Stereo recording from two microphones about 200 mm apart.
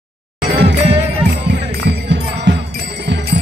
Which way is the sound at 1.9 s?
65° right (ahead or behind).